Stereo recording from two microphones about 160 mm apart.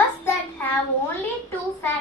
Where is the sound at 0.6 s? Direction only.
10° left (ahead or behind).